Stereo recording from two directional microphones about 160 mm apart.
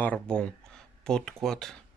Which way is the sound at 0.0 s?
5° left (ahead or behind).